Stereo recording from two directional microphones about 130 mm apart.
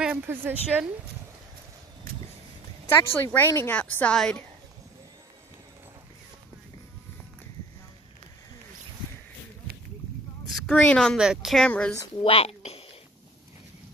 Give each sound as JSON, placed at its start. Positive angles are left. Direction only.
{"t": 0.0, "sound": "a woman's voice", "side_deg": -10}
{"t": 2.9, "sound": "a woman's voice", "side_deg": 15}
{"t": 10.5, "sound": "a woman's voice", "side_deg": 5}
{"t": 11.1, "sound": "speech", "side_deg": -5}
{"t": 12.2, "sound": "a woman's voice", "side_deg": 45}